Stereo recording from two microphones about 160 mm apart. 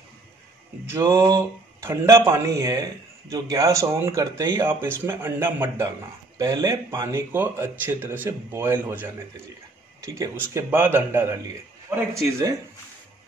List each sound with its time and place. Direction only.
0.8 s speech: 15° right (ahead or behind)